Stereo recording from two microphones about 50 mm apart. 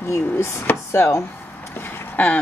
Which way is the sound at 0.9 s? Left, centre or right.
Left.